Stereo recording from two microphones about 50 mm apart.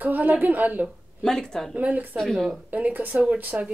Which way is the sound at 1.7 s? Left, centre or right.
Right.